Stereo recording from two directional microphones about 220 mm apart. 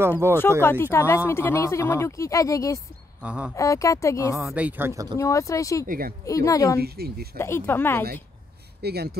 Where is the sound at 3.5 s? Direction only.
15° left (ahead or behind).